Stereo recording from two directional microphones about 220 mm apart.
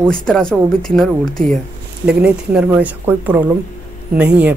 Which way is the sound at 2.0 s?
5° right (ahead or behind).